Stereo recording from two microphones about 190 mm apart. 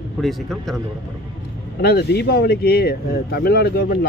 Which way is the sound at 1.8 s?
55° left (ahead or behind).